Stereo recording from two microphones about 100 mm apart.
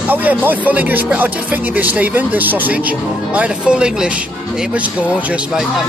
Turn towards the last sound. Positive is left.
turn(degrees=-5)  # may be behind; listen again after turning